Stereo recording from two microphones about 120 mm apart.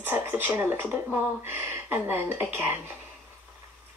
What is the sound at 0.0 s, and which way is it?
Speech, 20° right (ahead or behind).